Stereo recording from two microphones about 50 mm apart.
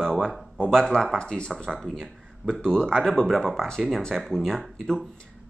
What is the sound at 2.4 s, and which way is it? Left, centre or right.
Speech, right.